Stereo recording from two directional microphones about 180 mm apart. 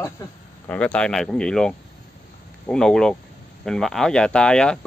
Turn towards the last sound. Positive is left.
turn(degrees=5)  # may be behind; listen again after turning